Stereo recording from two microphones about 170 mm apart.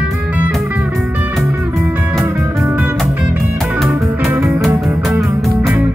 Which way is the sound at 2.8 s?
5° right (ahead or behind).